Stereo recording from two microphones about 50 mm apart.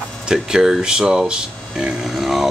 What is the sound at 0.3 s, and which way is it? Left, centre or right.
Speech, centre.